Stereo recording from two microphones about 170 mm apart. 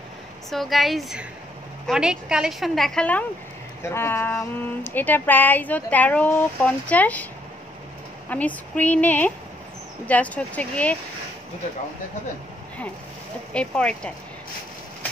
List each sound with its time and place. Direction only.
0.5 s a woman's voice: centre (ahead or behind)
8.3 s speech: 10° left (ahead or behind)
13.5 s a woman's voice: 5° left (ahead or behind)